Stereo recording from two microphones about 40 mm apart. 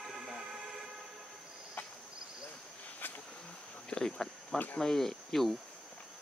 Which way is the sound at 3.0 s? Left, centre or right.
Left.